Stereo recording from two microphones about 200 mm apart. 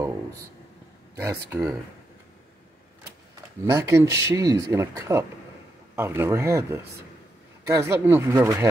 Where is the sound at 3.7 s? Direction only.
15° right (ahead or behind).